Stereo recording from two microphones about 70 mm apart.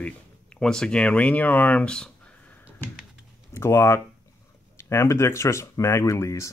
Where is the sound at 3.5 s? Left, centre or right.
Left.